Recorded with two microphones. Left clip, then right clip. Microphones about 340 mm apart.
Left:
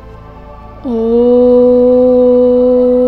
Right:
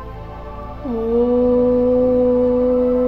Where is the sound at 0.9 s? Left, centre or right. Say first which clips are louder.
Left 8 dB; left.